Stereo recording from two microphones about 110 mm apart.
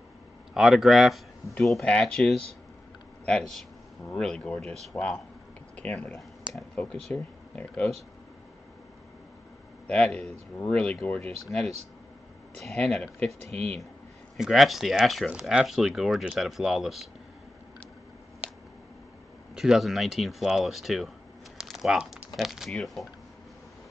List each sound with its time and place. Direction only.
0.6 s speech: 5° right (ahead or behind); by 7.9 s 10° left (ahead or behind)
9.8 s speech: 10° left (ahead or behind)
12.9 s speech: 10° left (ahead or behind)
13.3 s speech: 70° right (ahead or behind)
14.3 s speech: centre (ahead or behind)
18.4 s a sound: 10° right (ahead or behind)
19.5 s speech: 5° right (ahead or behind)